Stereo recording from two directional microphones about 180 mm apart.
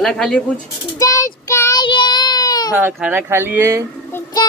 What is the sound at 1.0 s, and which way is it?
Child singing, 20° left (ahead or behind).